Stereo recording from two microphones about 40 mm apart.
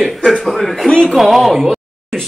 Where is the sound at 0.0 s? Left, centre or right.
Centre.